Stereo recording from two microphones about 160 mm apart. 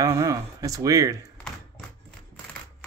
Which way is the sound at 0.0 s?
20° right (ahead or behind).